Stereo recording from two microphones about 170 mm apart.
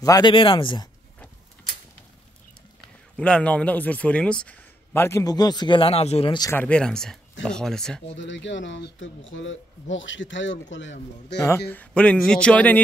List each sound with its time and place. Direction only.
0.0 s speech: 25° left (ahead or behind)
3.2 s speech: 5° left (ahead or behind); by 6.3 s 35° left (ahead or behind)
6.5 s speech: 10° left (ahead or behind)
8.2 s speech: 90° left
11.7 s speech: 10° left (ahead or behind)